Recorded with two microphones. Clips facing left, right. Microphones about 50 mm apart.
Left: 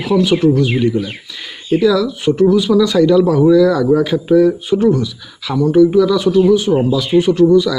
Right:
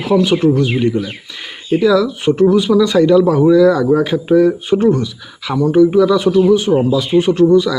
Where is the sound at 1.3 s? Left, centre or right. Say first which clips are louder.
Even; right.